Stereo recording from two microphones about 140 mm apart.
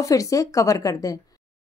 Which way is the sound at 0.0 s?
25° left (ahead or behind).